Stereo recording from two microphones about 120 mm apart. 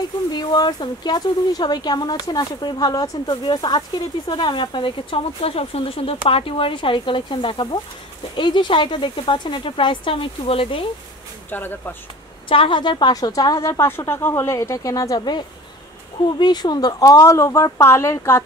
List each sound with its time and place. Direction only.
0.3 s speech: 35° left (ahead or behind)
11.5 s speech: 15° left (ahead or behind)
12.4 s a woman's voice: 45° left (ahead or behind); by 18.4 s 25° left (ahead or behind)